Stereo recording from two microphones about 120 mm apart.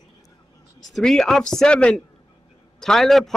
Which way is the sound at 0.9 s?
5° left (ahead or behind).